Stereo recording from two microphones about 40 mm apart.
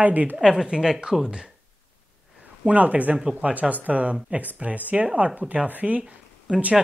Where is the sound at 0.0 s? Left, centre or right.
Right.